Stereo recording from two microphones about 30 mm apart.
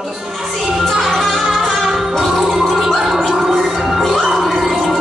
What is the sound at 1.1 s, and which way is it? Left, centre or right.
Music, centre.